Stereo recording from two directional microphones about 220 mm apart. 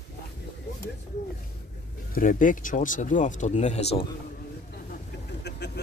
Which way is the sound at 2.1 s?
40° left (ahead or behind).